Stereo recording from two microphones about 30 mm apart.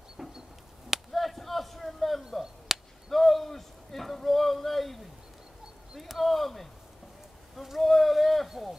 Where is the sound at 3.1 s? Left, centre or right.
Centre.